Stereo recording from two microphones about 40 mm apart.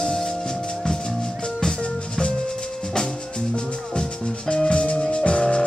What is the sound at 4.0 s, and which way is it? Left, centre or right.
Music, left.